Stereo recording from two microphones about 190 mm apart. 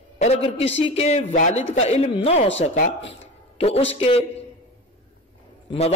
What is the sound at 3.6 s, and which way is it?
Speech, 30° left (ahead or behind).